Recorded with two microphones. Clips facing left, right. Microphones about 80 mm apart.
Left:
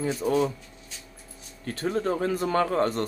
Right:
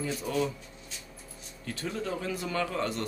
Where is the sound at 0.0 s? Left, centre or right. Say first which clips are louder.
Left 6 dB; left.